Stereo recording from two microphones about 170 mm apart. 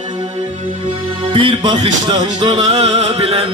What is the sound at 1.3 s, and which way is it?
Music, 25° right (ahead or behind).